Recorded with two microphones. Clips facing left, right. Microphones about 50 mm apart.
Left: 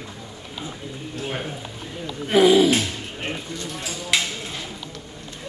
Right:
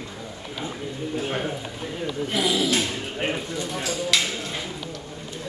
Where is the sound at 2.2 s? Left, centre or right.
Left.